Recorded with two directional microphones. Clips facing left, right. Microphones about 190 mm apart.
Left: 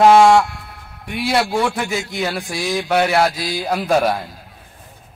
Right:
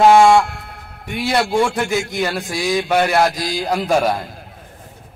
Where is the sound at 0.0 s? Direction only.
Centre (ahead or behind).